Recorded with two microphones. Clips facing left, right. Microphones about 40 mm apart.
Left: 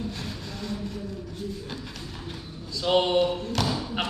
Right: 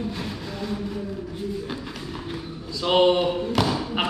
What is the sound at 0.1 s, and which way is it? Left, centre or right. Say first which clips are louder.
Music: right 4 dB; centre.